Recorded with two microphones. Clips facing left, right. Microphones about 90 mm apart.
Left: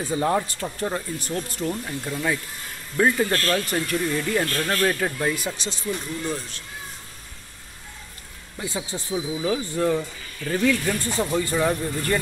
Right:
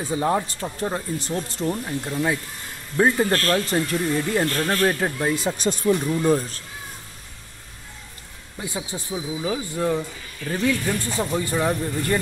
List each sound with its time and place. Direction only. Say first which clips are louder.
0.0 s speech: even; 15° right (ahead or behind)
3.0 s speech: right 2 dB; 30° right (ahead or behind)
5.6 s speech: right 9 dB; 50° right (ahead or behind)
6.2 s speech: right 9 dB; 40° right (ahead or behind)
8.5 s speech: even; 15° right (ahead or behind)